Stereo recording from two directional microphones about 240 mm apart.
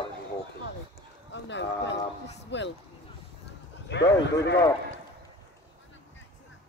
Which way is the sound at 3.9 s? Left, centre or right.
Left.